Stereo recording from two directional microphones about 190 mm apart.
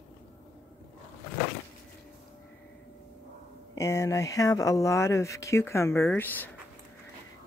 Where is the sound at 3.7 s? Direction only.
15° left (ahead or behind).